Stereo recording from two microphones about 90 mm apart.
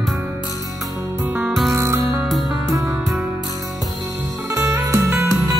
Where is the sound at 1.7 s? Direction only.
30° right (ahead or behind).